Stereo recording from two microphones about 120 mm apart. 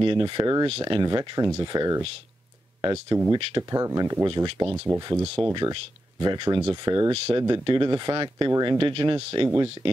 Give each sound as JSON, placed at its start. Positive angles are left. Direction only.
{"t": 0.0, "sound": "speech", "side_deg": -40}
{"t": 0.7, "sound": "speech", "side_deg": -45}
{"t": 2.9, "sound": "speech", "side_deg": -20}
{"t": 4.6, "sound": "speech", "side_deg": -15}
{"t": 5.5, "sound": "speech", "side_deg": -40}